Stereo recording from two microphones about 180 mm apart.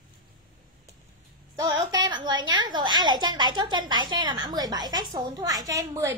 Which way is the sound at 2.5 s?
25° right (ahead or behind).